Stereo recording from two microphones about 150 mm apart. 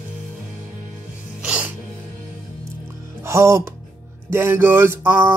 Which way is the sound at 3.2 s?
20° right (ahead or behind).